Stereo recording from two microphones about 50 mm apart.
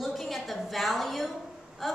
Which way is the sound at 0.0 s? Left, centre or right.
Centre.